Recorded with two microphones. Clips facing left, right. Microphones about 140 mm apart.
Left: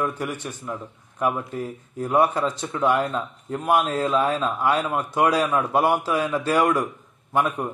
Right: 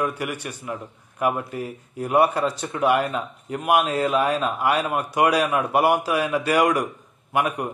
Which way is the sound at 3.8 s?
70° right (ahead or behind).